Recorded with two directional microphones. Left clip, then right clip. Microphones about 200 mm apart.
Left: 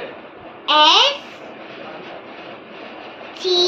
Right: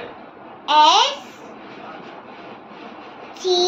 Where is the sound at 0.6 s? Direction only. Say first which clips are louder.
Left 1 dB; 25° right (ahead or behind).